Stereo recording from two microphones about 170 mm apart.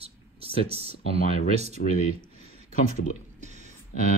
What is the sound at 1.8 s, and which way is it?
Speech, 60° left (ahead or behind).